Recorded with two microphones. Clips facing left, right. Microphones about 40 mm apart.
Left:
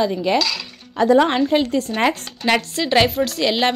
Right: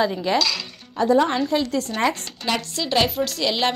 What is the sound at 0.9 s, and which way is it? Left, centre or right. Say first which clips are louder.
Speech: left 4 dB; left.